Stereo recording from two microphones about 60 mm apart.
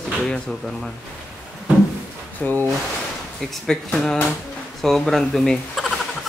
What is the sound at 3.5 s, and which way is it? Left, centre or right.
Speech, centre.